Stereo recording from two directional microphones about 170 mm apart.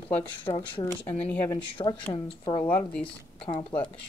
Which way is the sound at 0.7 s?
40° left (ahead or behind).